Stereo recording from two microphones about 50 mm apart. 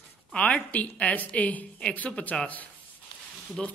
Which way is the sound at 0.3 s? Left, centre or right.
Left.